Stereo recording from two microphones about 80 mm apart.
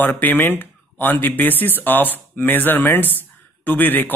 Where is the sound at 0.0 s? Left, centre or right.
Left.